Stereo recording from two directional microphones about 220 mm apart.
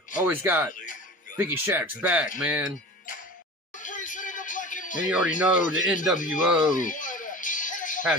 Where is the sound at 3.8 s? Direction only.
35° left (ahead or behind).